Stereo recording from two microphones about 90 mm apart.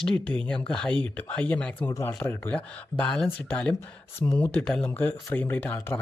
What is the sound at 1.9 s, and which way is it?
Speech, 40° left (ahead or behind).